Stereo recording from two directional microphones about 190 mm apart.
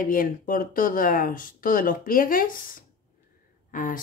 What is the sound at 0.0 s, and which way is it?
Speech, 45° left (ahead or behind).